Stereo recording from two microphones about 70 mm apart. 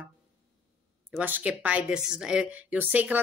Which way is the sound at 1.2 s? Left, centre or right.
Right.